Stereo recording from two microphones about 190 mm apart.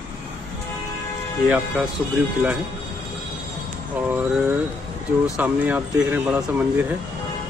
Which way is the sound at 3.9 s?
10° right (ahead or behind).